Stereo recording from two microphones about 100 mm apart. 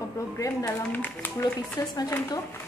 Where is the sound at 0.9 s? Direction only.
15° left (ahead or behind).